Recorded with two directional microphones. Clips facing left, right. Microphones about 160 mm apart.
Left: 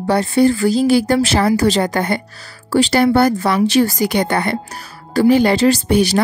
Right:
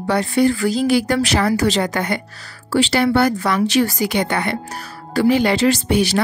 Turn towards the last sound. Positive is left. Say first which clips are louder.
# left 3 dB
turn(degrees=40)  # may be behind; listen again after turning